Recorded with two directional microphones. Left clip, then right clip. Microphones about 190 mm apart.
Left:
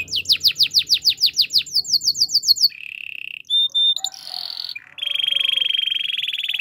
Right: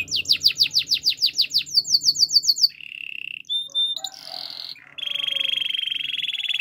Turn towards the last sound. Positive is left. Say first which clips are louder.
# left 2 dB
turn(degrees=15)  # may be behind; listen again after turning